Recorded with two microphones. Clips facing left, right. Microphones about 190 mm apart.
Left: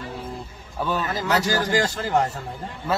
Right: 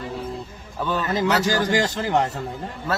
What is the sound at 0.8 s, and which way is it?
Speech, 10° left (ahead or behind).